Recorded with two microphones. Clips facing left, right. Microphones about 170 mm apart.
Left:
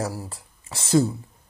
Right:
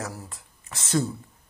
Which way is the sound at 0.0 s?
35° left (ahead or behind).